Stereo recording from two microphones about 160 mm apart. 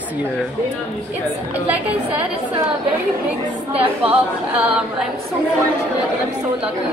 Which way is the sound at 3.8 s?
10° right (ahead or behind).